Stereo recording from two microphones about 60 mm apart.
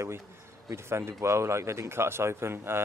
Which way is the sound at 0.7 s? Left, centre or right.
Right.